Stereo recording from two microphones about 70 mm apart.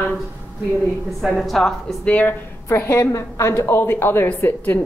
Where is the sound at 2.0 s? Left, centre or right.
Left.